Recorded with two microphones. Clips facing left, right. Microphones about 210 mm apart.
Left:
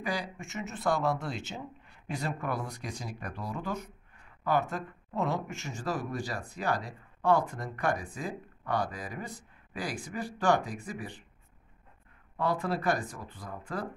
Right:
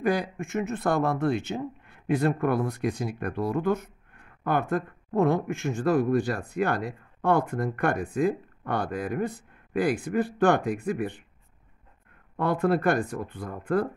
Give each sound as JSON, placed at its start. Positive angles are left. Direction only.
{"t": 0.0, "sound": "speech", "side_deg": -55}
{"t": 12.4, "sound": "speech", "side_deg": -55}